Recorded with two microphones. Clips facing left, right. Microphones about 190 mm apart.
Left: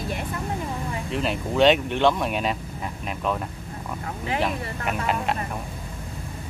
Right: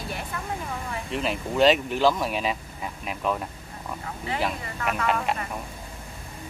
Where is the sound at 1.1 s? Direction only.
Centre (ahead or behind).